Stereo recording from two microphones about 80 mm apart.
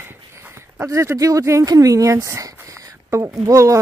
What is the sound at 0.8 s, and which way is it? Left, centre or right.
Speech, right.